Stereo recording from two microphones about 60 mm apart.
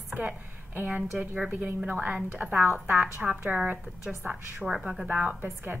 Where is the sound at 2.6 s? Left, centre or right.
Right.